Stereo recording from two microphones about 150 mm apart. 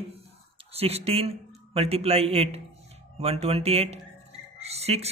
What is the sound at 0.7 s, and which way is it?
A man's voice, 40° right (ahead or behind).